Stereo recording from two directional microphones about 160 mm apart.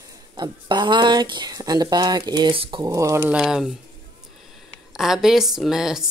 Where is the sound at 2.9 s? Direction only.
20° right (ahead or behind).